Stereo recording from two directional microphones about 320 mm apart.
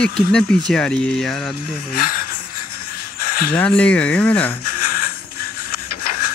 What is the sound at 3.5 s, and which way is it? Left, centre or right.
Speech, centre.